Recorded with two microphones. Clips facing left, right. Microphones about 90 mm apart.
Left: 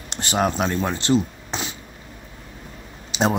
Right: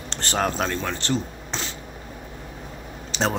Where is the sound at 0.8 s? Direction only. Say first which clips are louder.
Left 5 dB; 15° left (ahead or behind).